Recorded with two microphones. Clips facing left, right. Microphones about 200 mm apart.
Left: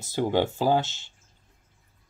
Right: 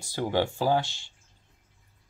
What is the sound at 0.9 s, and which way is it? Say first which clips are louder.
Speech: left 1 dB; 15° right (ahead or behind).